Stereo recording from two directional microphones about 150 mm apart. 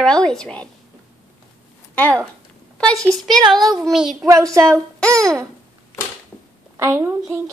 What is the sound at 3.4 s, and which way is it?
Speech, 25° right (ahead or behind).